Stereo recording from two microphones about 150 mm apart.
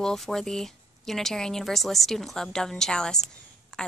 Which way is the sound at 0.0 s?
Centre (ahead or behind).